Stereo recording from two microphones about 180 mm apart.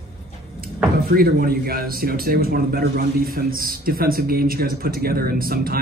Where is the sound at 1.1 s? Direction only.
55° right (ahead or behind).